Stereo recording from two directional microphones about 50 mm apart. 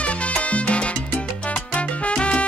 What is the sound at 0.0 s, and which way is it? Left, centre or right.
Salsa music, left.